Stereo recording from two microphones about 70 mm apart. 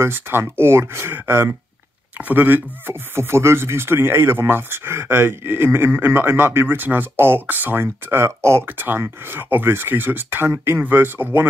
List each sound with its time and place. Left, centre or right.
0.0 s speech: right